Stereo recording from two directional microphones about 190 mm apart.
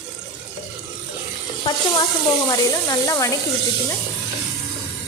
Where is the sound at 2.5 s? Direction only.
20° left (ahead or behind).